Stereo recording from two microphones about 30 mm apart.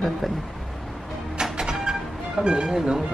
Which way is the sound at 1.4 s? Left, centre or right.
Right.